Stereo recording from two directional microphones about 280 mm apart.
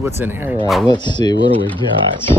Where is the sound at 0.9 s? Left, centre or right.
Centre.